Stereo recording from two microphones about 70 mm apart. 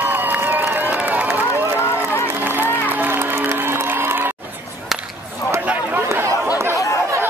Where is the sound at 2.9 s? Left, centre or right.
Right.